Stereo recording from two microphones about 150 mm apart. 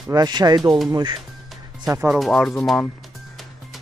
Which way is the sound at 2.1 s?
Centre (ahead or behind).